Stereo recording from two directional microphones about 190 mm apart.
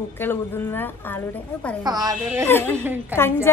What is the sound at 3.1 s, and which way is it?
Speech, 10° left (ahead or behind).